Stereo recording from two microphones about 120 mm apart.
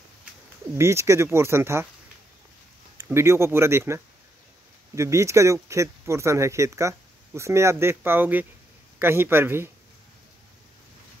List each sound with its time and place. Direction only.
0.7 s speech: 20° right (ahead or behind)
3.1 s speech: 20° right (ahead or behind)